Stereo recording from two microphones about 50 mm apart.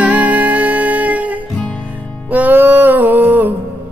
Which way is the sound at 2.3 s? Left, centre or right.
Right.